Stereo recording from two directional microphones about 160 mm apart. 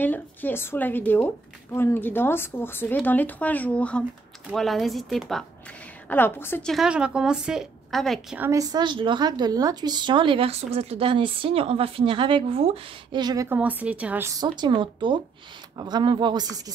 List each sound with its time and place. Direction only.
0.0 s a woman's voice: 10° left (ahead or behind)
6.0 s a woman's voice: 10° left (ahead or behind)
6.7 s speech: 5° right (ahead or behind)
8.4 s a woman's voice: 20° right (ahead or behind)
13.5 s speech: 10° right (ahead or behind)
14.6 s a woman's voice: 30° right (ahead or behind)